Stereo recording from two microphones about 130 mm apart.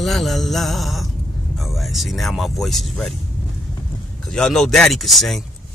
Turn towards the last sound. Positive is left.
turn(degrees=0)  # may be behind; listen again after turning